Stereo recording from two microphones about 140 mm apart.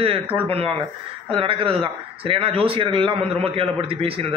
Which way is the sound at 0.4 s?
40° right (ahead or behind).